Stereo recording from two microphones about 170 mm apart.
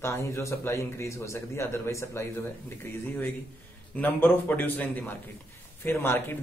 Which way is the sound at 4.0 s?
10° left (ahead or behind).